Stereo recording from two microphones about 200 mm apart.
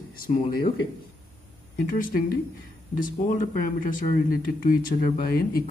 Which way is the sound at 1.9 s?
45° left (ahead or behind).